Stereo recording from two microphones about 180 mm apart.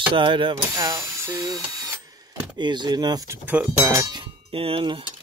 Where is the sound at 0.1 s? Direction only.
25° right (ahead or behind).